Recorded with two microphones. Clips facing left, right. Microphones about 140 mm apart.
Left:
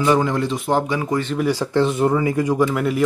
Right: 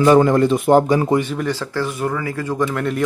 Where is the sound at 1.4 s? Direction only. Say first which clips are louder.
Left 4 dB; 15° left (ahead or behind).